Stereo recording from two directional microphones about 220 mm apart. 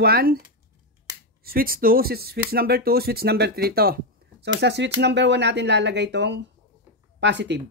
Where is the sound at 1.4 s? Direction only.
40° right (ahead or behind).